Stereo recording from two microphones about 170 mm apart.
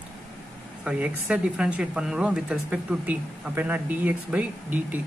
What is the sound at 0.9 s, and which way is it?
Speech, 5° right (ahead or behind).